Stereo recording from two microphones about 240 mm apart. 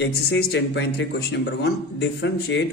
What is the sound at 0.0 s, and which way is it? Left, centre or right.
Speech, left.